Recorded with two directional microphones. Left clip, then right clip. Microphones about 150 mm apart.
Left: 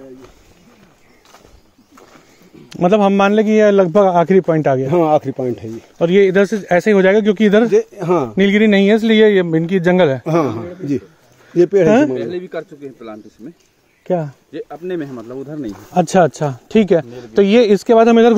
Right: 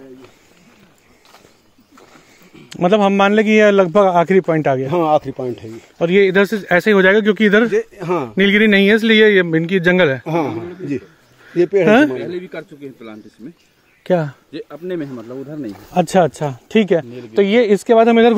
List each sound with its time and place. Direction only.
2.7 s speech: 10° left (ahead or behind)
3.7 s speech: 10° left (ahead or behind)
4.8 s speech: 65° left (ahead or behind)
5.9 s speech: 10° left (ahead or behind)
7.7 s speech: 55° left (ahead or behind)
8.4 s speech: 5° left (ahead or behind)
10.2 s a man's voice: 90° left
12.4 s speech: 50° right (ahead or behind)
14.0 s speech: 20° right (ahead or behind)
14.5 s speech: 50° right (ahead or behind)
15.1 s speech: 10° right (ahead or behind)
15.6 s speech: 10° left (ahead or behind)
17.3 s speech: 30° left (ahead or behind)